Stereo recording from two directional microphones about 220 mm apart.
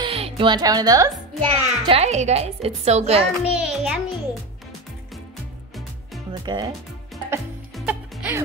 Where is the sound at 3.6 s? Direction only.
Centre (ahead or behind).